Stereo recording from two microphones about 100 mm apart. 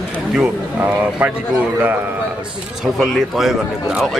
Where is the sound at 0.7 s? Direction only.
15° right (ahead or behind).